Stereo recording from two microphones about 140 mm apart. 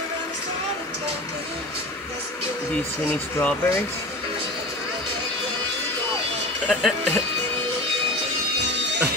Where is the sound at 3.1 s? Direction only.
15° left (ahead or behind).